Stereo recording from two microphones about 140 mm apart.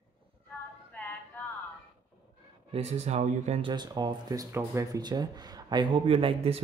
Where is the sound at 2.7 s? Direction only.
50° right (ahead or behind).